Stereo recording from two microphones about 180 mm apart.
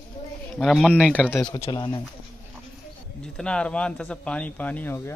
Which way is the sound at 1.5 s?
25° left (ahead or behind).